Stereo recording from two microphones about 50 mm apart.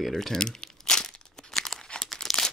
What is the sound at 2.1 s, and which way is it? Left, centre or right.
Crumpling, centre.